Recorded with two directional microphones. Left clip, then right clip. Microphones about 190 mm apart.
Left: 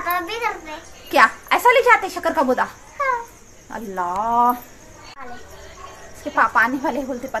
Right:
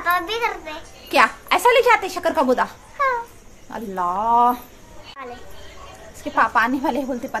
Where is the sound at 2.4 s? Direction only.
5° right (ahead or behind).